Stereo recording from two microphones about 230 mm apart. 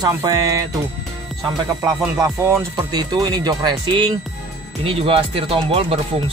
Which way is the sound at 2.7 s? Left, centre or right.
Centre.